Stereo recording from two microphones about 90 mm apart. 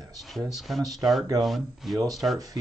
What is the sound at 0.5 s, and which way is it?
Speech, centre (ahead or behind).